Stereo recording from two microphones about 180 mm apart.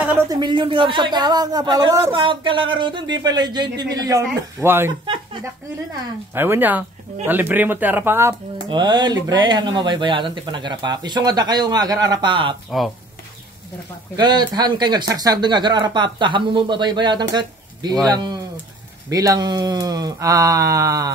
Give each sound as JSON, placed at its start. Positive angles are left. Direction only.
{"t": 0.3, "sound": "speech", "side_deg": -25}
{"t": 5.0, "sound": "a sound", "side_deg": -25}
{"t": 6.3, "sound": "speech", "side_deg": -10}
{"t": 8.6, "sound": "speech", "side_deg": -25}
{"t": 14.1, "sound": "speech", "side_deg": -25}